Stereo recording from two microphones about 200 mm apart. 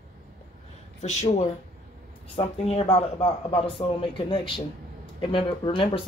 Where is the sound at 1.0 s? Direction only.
35° left (ahead or behind).